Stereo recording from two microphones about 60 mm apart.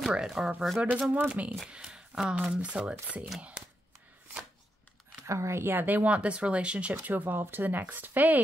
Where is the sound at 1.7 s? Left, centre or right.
Centre.